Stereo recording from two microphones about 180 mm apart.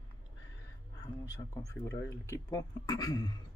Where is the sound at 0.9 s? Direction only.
20° left (ahead or behind).